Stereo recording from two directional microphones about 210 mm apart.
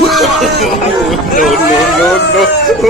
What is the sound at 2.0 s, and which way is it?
Speech, centre (ahead or behind).